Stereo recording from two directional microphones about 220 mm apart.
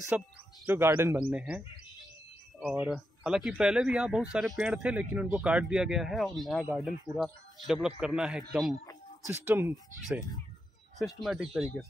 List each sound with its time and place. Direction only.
0.1 s speech: 5° right (ahead or behind)
2.6 s speech: 5° right (ahead or behind)